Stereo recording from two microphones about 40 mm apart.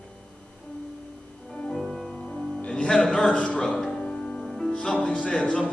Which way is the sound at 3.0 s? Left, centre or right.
Centre.